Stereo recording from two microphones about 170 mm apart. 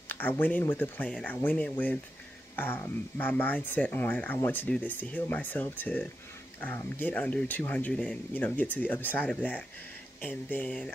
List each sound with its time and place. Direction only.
0.1 s speech: 10° left (ahead or behind)